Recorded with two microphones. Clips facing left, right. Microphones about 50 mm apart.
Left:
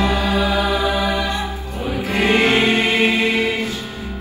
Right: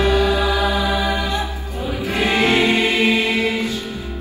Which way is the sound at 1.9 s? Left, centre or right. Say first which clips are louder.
Left 2 dB; left.